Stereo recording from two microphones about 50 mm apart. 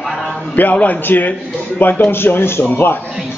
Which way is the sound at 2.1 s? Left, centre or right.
Left.